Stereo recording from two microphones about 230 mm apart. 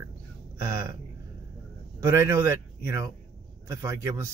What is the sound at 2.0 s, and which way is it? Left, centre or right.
Speech, centre.